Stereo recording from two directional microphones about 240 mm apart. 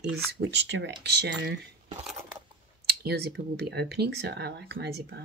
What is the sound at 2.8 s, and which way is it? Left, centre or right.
Speech, right.